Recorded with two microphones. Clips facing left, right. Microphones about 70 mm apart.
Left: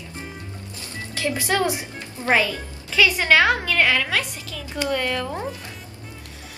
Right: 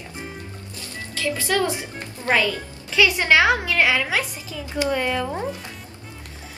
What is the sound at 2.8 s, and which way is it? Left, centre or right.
A woman's voice, centre.